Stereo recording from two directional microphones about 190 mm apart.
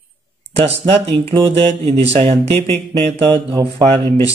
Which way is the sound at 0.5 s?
30° right (ahead or behind).